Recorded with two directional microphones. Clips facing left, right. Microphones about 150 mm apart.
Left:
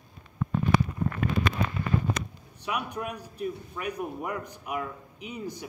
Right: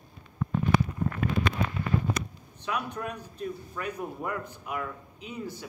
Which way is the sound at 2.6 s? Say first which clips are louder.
Even; 15° left (ahead or behind).